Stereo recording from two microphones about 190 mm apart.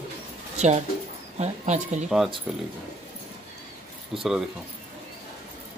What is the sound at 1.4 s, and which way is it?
Speech, 40° right (ahead or behind).